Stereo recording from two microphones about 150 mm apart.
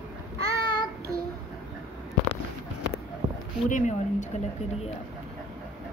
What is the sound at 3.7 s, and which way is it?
Speech, 55° left (ahead or behind).